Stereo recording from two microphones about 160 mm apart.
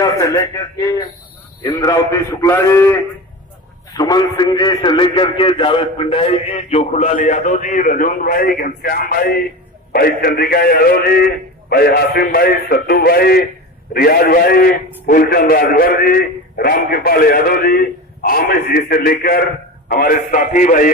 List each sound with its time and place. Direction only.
0.0 s a man's voice: 25° left (ahead or behind); by 20.9 s 55° left (ahead or behind)